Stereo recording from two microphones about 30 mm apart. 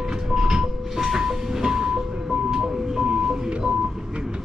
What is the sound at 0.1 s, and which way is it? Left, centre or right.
Vehicle, centre.